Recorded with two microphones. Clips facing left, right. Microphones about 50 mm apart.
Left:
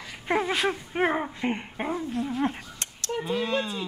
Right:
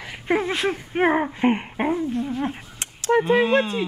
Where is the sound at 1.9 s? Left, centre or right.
Centre.